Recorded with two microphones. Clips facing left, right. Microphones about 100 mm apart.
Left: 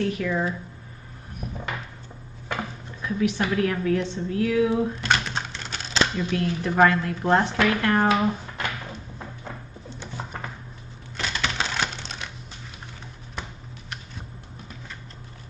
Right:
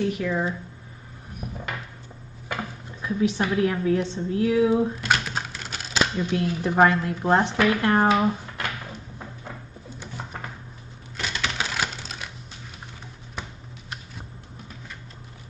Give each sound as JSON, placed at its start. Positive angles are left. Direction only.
{"t": 0.0, "sound": "speech", "side_deg": -15}
{"t": 3.0, "sound": "a woman's voice", "side_deg": -20}
{"t": 5.0, "sound": "typing", "side_deg": -5}
{"t": 6.1, "sound": "speech", "side_deg": -20}
{"t": 9.8, "sound": "a sound", "side_deg": -5}
{"t": 11.1, "sound": "typing", "side_deg": -5}